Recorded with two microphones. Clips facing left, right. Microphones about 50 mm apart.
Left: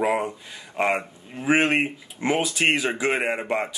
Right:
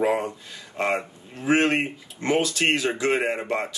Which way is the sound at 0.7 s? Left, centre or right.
Centre.